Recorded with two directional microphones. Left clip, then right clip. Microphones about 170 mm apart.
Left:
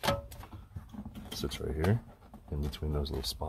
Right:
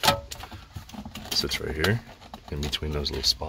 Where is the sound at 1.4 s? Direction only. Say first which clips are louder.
Right 9 dB; 5° left (ahead or behind).